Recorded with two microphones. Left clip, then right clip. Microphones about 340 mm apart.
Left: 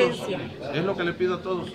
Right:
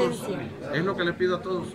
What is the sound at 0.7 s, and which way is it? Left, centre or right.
Speech, centre.